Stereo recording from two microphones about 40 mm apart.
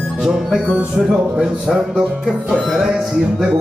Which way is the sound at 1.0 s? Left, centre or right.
Centre.